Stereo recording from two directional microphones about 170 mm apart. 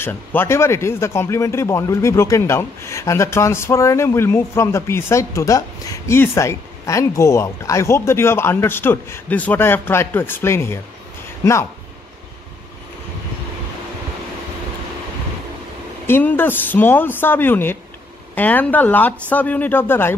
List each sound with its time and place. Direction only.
0.0 s speech: 10° left (ahead or behind)
16.1 s speech: 10° left (ahead or behind)